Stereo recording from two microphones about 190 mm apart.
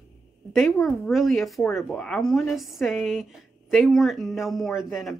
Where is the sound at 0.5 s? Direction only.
Centre (ahead or behind).